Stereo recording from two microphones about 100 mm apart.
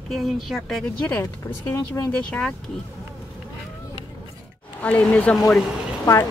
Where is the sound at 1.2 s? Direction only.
30° left (ahead or behind).